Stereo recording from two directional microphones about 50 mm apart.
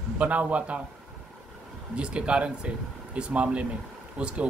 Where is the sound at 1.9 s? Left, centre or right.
Right.